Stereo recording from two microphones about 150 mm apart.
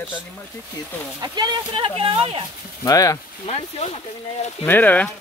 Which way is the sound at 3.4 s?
45° left (ahead or behind).